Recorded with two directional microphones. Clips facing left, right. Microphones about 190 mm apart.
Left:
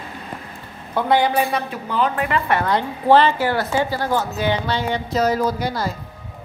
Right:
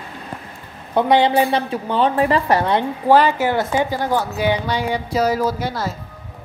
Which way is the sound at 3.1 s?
15° right (ahead or behind).